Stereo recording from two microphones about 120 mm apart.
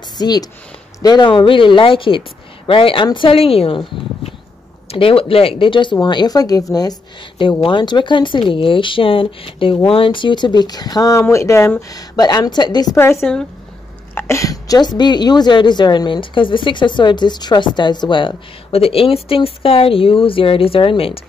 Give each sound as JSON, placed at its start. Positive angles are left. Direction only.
{"t": 0.2, "sound": "a woman's voice", "side_deg": 35}
{"t": 12.9, "sound": "speech", "side_deg": 20}
{"t": 13.2, "sound": "a woman's voice", "side_deg": 5}
{"t": 14.1, "sound": "a woman's voice", "side_deg": 25}